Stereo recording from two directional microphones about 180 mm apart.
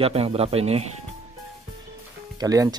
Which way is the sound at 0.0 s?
35° right (ahead or behind).